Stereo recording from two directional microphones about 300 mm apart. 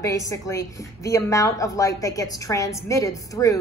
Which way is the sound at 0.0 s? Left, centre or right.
Centre.